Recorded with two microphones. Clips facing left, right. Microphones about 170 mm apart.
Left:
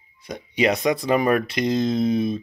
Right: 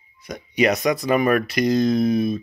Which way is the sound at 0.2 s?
25° left (ahead or behind).